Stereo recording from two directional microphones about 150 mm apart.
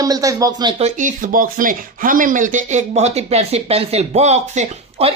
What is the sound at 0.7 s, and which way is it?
Speech, 55° right (ahead or behind).